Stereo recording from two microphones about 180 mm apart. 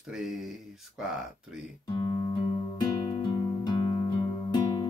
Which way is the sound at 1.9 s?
25° left (ahead or behind).